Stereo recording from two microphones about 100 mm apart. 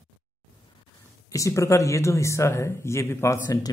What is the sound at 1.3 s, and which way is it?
Speech, 30° left (ahead or behind).